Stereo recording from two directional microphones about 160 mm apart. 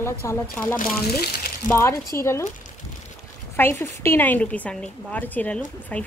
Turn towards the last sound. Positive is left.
turn(degrees=10)  # may be behind; listen again after turning